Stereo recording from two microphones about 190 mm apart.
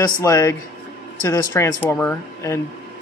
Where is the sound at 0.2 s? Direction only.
15° left (ahead or behind).